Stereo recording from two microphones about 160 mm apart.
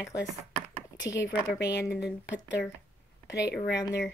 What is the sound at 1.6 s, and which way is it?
Speech, 90° left.